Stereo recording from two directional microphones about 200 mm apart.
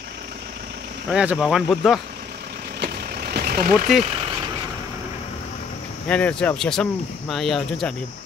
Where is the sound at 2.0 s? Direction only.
50° right (ahead or behind).